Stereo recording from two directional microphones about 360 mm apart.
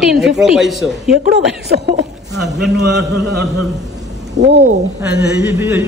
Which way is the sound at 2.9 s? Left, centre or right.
Right.